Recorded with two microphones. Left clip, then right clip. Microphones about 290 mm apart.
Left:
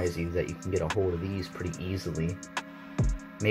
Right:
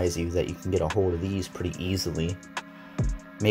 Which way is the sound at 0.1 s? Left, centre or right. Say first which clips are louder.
Right 3 dB; centre.